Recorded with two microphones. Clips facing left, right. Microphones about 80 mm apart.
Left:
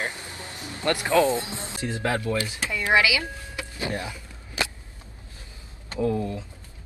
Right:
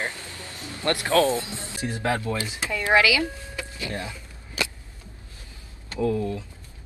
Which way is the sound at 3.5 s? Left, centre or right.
Centre.